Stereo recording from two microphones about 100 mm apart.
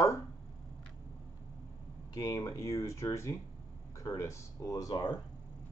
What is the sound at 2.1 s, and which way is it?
Speech, 30° left (ahead or behind).